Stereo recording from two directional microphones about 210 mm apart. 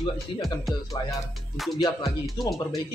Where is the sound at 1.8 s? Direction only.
20° left (ahead or behind).